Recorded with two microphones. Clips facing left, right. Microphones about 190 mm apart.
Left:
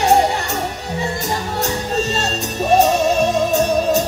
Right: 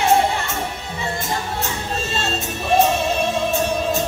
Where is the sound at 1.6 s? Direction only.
40° left (ahead or behind).